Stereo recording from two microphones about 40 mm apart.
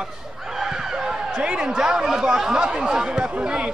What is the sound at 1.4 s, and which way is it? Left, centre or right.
Speech, right.